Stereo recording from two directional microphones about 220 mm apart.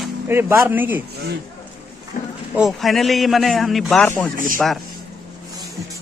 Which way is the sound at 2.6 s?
Centre (ahead or behind).